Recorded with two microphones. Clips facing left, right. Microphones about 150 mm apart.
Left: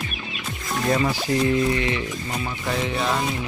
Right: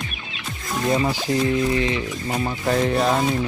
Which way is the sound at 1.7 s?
30° right (ahead or behind).